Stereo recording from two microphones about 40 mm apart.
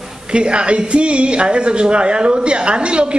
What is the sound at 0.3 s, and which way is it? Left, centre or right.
A man's voice, right.